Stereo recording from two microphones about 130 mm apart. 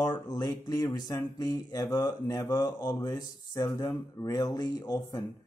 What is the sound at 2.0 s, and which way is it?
Speech, 35° left (ahead or behind).